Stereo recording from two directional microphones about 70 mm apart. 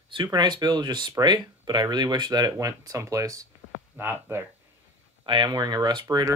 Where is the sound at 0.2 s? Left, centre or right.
Right.